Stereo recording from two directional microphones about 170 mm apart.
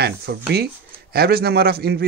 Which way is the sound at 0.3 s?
75° right (ahead or behind).